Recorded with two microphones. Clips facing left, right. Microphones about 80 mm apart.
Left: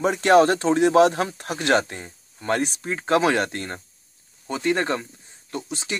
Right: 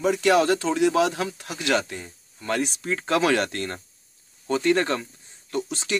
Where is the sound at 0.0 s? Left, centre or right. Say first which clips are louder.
Left 3 dB; left.